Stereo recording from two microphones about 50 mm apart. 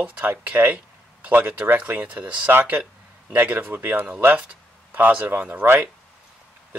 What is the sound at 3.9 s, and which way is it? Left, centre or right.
A man's voice, right.